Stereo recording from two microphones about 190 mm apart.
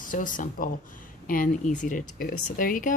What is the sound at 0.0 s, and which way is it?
Speech, 45° left (ahead or behind).